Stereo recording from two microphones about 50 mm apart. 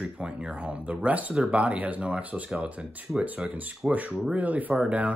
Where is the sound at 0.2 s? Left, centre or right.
Right.